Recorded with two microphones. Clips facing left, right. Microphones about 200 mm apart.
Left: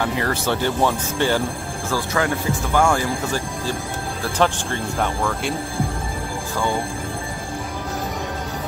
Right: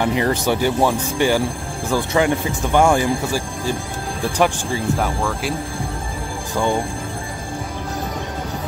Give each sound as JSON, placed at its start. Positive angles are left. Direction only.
{"t": 0.0, "sound": "speech", "side_deg": -20}